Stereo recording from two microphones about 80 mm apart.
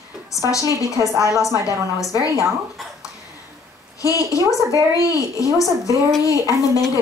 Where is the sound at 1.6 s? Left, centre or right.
Left.